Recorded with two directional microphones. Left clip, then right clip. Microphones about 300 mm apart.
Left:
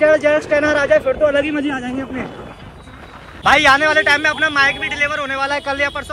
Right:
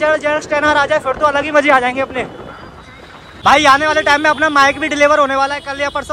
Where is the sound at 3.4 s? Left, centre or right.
Centre.